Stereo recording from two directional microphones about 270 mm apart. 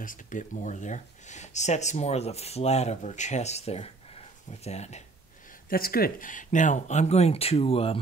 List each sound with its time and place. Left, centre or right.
0.0 s speech: left